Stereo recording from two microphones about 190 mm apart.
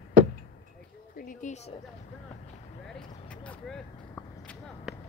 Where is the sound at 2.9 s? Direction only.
5° left (ahead or behind).